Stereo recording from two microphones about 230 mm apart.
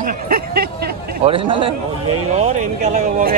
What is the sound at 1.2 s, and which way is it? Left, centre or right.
A man's voice, right.